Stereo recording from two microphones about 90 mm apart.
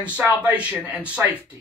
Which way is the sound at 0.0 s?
15° right (ahead or behind).